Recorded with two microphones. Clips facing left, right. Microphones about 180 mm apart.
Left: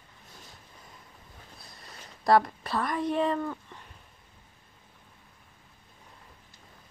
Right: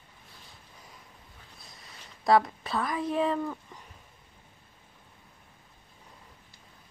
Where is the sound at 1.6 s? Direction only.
Centre (ahead or behind).